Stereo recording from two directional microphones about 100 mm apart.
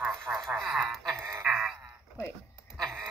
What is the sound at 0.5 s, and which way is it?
Speech, centre (ahead or behind).